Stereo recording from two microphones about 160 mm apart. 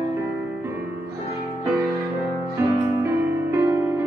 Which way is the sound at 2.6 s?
15° right (ahead or behind).